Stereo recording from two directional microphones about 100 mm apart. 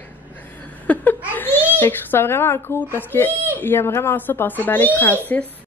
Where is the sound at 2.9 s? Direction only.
20° left (ahead or behind).